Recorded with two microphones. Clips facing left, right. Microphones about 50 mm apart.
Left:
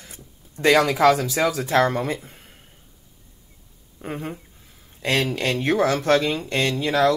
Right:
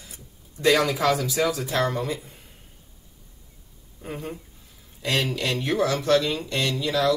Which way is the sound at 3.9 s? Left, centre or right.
Left.